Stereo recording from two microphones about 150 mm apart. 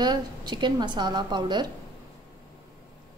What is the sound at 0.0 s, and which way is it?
A woman's voice, 30° right (ahead or behind).